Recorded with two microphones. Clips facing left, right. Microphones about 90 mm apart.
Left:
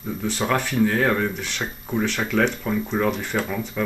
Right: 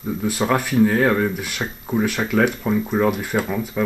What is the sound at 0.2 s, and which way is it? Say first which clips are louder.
Speech: right 2 dB; 5° right (ahead or behind).